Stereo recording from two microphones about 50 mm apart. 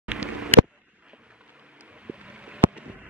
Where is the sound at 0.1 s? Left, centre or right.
Right.